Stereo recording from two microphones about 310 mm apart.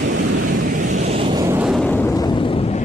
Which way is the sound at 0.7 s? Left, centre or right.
Right.